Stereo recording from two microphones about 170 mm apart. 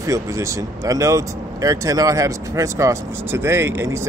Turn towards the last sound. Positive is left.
turn(degrees=-15)  # may be behind; listen again after turning